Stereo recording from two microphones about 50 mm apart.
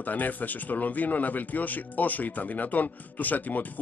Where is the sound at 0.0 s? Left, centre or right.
Left.